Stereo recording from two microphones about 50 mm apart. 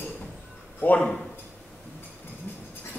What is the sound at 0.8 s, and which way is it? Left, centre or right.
Speech, left.